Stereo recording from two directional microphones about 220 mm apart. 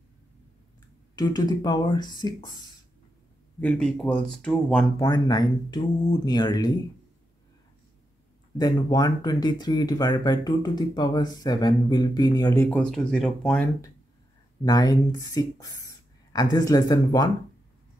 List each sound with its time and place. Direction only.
1.1 s speech: 20° left (ahead or behind)
3.6 s speech: 5° left (ahead or behind)
4.9 s speech: 15° left (ahead or behind)
8.5 s speech: 20° left (ahead or behind)
12.6 s speech: 5° left (ahead or behind)
14.6 s speech: 15° left (ahead or behind)